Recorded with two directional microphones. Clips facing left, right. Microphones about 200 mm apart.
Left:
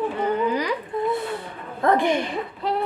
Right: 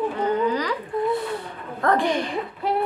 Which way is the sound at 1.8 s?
25° left (ahead or behind).